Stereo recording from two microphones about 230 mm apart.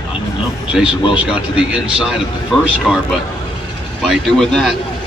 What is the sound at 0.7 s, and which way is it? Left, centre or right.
Speech, centre.